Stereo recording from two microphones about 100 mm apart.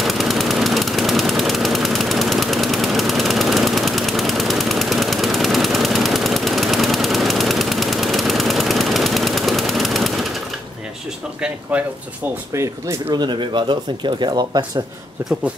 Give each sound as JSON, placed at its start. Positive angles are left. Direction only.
{"t": 0.0, "sound": "machine gun", "side_deg": 0}
{"t": 11.7, "sound": "speech", "side_deg": -10}
{"t": 13.1, "sound": "speech", "side_deg": -45}